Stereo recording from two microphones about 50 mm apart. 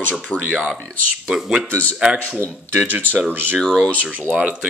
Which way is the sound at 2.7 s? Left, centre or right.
Right.